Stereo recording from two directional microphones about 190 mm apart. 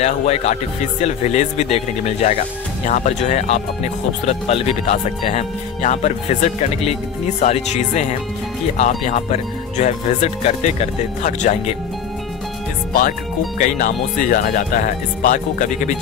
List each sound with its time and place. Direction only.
0.0 s speech: 35° left (ahead or behind)
13.6 s speech: 40° left (ahead or behind)